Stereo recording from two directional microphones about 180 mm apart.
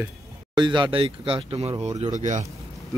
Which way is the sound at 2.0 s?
40° right (ahead or behind).